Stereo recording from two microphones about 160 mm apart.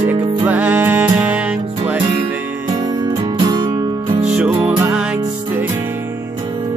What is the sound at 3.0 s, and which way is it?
Music, 30° right (ahead or behind).